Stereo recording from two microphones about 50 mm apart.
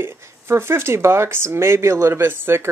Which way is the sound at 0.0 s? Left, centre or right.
Right.